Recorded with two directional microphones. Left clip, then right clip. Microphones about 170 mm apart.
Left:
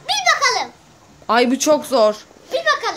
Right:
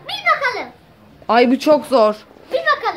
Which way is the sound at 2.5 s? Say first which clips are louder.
Right 1 dB; 15° left (ahead or behind).